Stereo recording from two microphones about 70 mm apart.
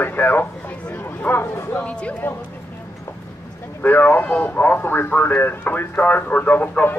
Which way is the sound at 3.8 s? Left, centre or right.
Left.